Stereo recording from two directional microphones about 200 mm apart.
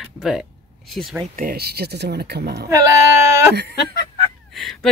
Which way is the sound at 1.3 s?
45° right (ahead or behind).